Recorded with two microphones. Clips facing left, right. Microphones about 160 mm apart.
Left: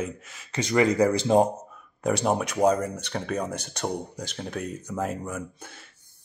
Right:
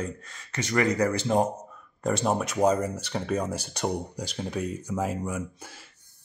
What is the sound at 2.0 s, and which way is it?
Speech, 5° left (ahead or behind).